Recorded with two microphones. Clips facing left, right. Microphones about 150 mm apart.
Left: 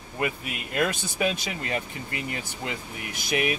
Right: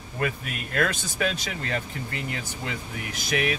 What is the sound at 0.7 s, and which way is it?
Speech, 15° left (ahead or behind).